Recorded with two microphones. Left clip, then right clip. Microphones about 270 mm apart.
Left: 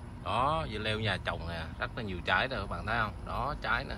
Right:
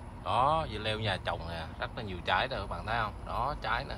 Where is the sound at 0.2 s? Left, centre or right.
Centre.